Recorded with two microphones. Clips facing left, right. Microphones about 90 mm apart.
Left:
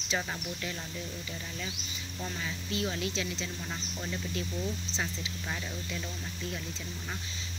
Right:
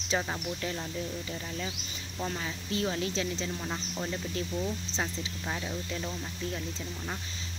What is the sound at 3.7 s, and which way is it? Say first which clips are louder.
Speech: right 4 dB; 20° right (ahead or behind).